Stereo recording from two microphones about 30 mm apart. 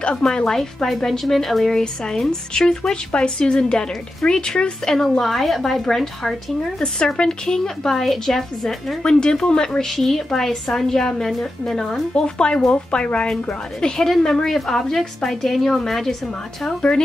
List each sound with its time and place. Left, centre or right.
0.0 s a woman's voice: left
0.8 s speech: centre
1.7 s speech: centre
4.8 s a woman's voice: centre
5.2 s speech: centre
7.2 s speech: left
7.9 s speech: centre
9.0 s speech: left
9.8 s a woman's voice: centre
12.2 s speech: left
13.7 s a woman's voice: left
15.0 s a woman's voice: centre